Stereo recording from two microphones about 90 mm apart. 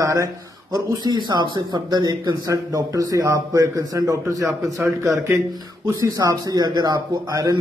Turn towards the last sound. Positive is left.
turn(degrees=-45)  # may be behind; listen again after turning